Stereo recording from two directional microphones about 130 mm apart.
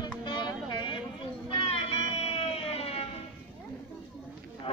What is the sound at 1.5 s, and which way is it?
Music, 50° left (ahead or behind).